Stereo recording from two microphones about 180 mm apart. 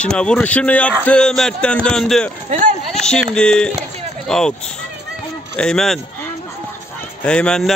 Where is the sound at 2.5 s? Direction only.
40° right (ahead or behind).